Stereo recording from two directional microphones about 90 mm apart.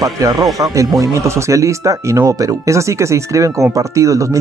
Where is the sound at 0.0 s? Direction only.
40° right (ahead or behind).